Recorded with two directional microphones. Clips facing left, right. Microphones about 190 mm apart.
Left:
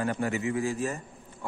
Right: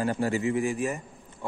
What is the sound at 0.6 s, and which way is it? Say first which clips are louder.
Speech: right 2 dB; 15° right (ahead or behind).